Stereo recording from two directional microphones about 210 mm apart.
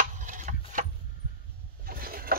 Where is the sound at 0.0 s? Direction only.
35° right (ahead or behind).